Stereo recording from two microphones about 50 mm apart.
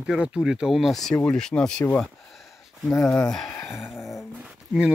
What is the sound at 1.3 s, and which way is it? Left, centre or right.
Speech, centre.